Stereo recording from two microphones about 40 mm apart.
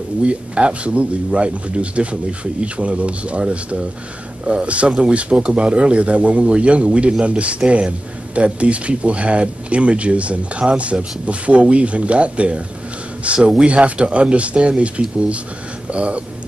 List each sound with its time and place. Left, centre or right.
0.2 s a man's voice: right